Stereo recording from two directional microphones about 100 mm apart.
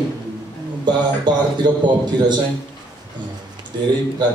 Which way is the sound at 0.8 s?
45° right (ahead or behind).